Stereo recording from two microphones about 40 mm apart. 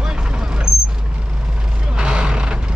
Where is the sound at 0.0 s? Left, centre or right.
Centre.